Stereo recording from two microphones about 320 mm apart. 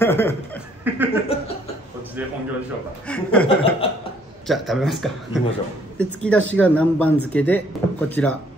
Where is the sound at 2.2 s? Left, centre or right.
Centre.